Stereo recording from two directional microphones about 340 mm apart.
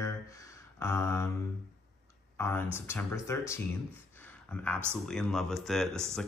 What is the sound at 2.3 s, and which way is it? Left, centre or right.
Speech, centre.